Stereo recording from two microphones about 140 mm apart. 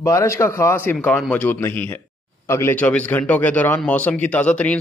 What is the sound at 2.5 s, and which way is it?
A man's voice, 15° left (ahead or behind).